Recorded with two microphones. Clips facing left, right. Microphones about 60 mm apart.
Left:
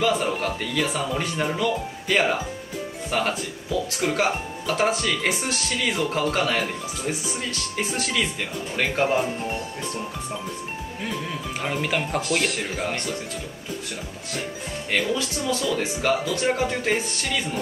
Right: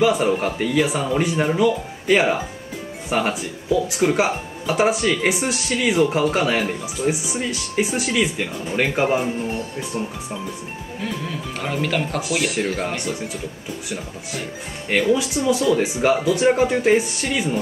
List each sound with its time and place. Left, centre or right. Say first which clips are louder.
0.0 s speech: right 5 dB; centre
11.0 s speech: right 3 dB; centre
12.2 s speech: right 2 dB; centre
15.0 s speech: right 7 dB; centre